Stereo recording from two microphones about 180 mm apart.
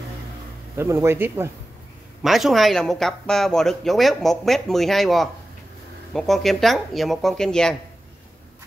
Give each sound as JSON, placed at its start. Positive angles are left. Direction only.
{"t": 0.7, "sound": "speech", "side_deg": -15}
{"t": 2.2, "sound": "speech", "side_deg": 0}